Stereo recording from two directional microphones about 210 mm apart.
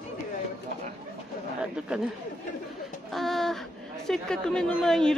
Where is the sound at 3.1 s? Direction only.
Centre (ahead or behind).